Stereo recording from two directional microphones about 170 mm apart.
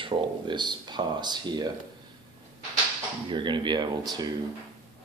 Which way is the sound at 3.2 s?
30° right (ahead or behind).